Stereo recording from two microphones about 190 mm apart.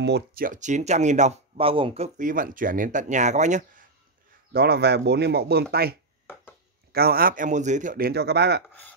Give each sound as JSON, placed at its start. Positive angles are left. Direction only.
{"t": 0.0, "sound": "speech", "side_deg": -55}
{"t": 2.1, "sound": "speech", "side_deg": -45}
{"t": 4.5, "sound": "speech", "side_deg": -55}
{"t": 8.6, "sound": "speech", "side_deg": 10}